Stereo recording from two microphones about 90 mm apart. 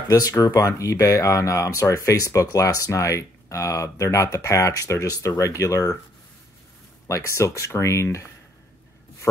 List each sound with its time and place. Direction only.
0.1 s speech: 40° left (ahead or behind)
7.1 s speech: 35° left (ahead or behind)